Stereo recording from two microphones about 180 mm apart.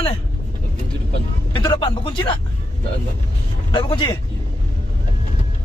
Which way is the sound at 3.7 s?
25° left (ahead or behind).